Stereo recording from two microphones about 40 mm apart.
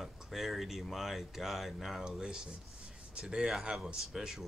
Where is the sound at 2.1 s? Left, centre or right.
Centre.